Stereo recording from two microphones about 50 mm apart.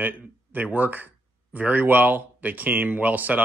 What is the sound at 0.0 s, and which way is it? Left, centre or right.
Speech, right.